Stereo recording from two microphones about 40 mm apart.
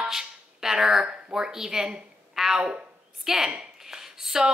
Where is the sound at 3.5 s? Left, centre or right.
Centre.